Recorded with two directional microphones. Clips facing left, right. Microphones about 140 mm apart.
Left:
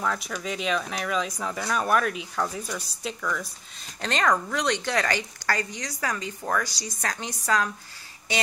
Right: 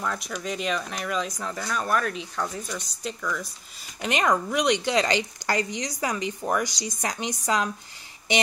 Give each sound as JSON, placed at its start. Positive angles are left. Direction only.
{"t": 0.0, "sound": "speech", "side_deg": -5}
{"t": 4.0, "sound": "a woman's voice", "side_deg": -10}
{"t": 8.3, "sound": "a sound", "side_deg": -20}